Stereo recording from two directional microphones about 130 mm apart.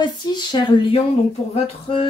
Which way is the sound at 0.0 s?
35° left (ahead or behind).